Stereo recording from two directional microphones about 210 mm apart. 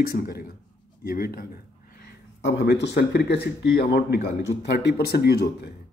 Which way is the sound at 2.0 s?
55° left (ahead or behind).